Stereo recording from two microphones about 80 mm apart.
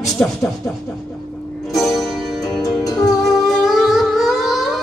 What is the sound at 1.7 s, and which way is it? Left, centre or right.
Music, centre.